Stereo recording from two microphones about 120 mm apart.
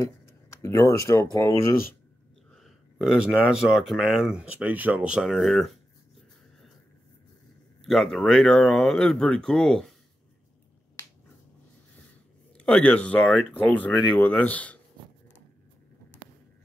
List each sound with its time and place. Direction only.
0.6 s speech: 25° left (ahead or behind)
2.5 s speech: centre (ahead or behind)
7.8 s speech: centre (ahead or behind)
12.5 s speech: 10° left (ahead or behind)